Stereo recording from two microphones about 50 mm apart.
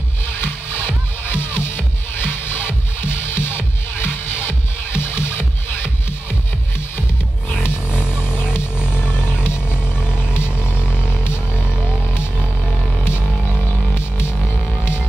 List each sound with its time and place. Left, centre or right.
0.4 s music: left
7.7 s a sound: right
9.3 s music: left
13.9 s music: left